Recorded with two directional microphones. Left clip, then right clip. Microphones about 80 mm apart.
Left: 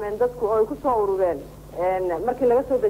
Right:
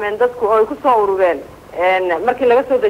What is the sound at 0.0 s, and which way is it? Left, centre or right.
A man's voice, right.